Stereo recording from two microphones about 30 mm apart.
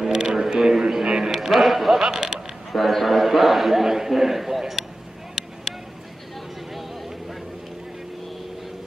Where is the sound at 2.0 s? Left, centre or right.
Right.